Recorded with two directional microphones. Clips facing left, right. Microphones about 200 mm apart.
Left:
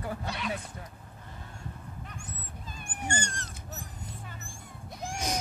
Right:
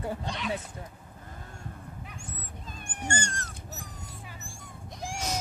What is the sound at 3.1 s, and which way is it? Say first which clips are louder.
Dog: right 2 dB; 45° right (ahead or behind).